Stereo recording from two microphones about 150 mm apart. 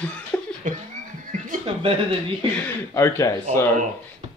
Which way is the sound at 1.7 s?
40° right (ahead or behind).